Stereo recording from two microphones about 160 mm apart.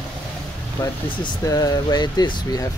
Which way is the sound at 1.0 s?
25° left (ahead or behind).